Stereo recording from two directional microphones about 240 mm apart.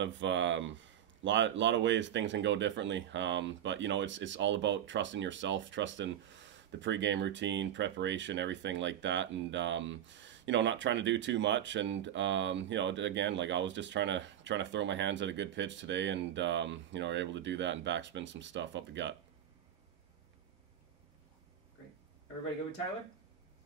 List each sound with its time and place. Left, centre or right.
0.0 s speech: right